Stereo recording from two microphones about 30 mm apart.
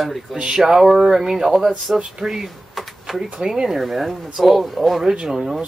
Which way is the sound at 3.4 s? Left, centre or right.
Right.